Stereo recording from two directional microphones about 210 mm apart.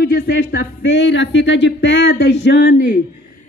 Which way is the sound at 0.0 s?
55° left (ahead or behind).